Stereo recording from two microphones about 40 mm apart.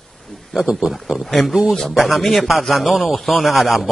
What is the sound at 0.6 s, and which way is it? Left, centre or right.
Speech, centre.